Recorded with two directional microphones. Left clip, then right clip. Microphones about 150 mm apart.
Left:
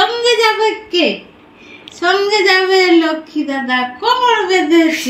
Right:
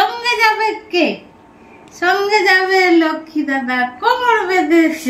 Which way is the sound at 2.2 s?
10° right (ahead or behind).